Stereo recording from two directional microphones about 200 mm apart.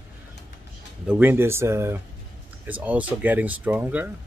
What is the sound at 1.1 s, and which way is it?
Speech, 10° right (ahead or behind).